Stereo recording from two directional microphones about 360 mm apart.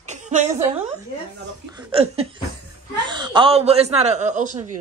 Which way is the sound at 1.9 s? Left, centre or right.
Centre.